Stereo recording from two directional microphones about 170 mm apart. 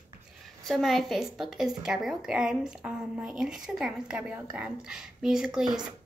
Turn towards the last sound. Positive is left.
turn(degrees=-5)  # may be behind; listen again after turning